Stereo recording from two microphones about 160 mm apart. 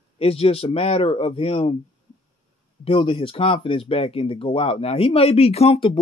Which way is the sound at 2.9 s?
35° left (ahead or behind).